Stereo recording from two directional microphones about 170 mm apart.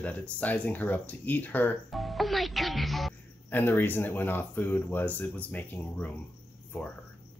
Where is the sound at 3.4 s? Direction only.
10° left (ahead or behind).